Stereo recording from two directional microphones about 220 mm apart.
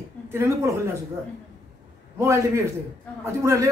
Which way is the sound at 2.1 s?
10° right (ahead or behind).